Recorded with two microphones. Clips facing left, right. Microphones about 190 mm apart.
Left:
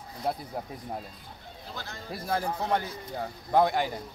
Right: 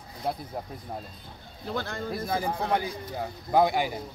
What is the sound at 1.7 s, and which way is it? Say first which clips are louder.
Speech: right 8 dB; 55° right (ahead or behind).